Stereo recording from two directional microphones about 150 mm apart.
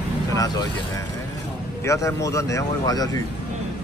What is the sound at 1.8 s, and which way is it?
Speech, 20° left (ahead or behind).